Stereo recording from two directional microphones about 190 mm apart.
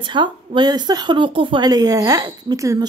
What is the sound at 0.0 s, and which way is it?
A woman's voice, 25° right (ahead or behind).